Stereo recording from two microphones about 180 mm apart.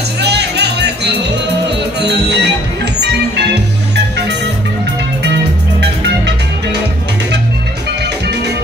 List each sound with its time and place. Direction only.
0.2 s music: 70° right (ahead or behind)
5.8 s music: 70° right (ahead or behind)